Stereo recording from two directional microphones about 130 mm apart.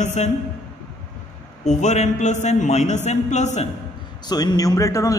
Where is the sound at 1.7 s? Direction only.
65° left (ahead or behind).